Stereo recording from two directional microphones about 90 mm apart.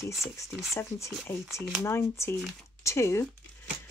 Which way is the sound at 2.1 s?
30° left (ahead or behind).